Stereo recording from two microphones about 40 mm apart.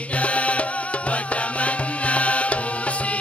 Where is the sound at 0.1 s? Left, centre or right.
Left.